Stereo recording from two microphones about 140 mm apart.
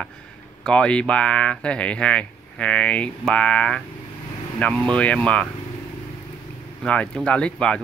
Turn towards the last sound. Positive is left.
turn(degrees=5)  # may be behind; listen again after turning